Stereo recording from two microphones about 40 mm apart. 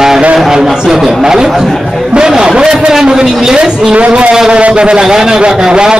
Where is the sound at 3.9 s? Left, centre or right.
Right.